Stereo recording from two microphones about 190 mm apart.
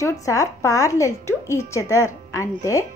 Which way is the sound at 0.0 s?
15° left (ahead or behind).